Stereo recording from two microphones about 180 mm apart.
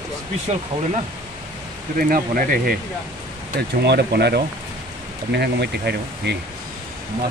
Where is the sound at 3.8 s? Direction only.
65° right (ahead or behind).